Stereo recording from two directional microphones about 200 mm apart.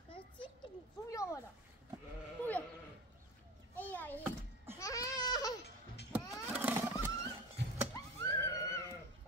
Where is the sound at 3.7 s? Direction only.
10° left (ahead or behind).